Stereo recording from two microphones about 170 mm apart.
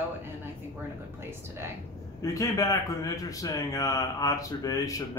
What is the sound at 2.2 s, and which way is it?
A man's voice, 20° left (ahead or behind).